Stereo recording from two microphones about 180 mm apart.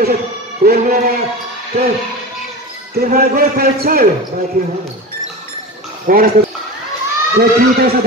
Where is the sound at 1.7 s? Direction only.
35° right (ahead or behind).